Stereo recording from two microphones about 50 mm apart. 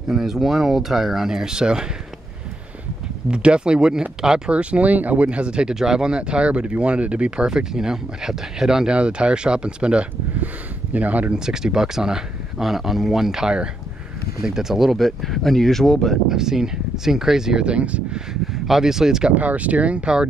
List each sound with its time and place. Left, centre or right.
0.1 s speech: centre
3.3 s speech: centre
11.3 s speech: centre
16.3 s speech: centre
18.3 s speech: centre
19.3 s speech: right